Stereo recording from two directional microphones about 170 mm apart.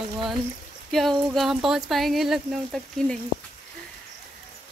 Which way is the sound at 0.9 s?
Centre (ahead or behind).